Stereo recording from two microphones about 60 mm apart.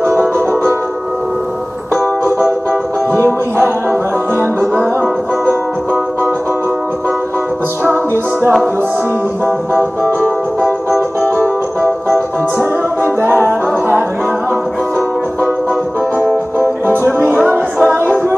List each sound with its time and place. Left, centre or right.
3.2 s music: right
8.1 s music: right
10.2 s music: centre
13.5 s music: right
16.6 s music: right